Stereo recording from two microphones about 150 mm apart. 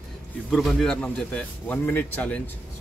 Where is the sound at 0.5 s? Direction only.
Centre (ahead or behind).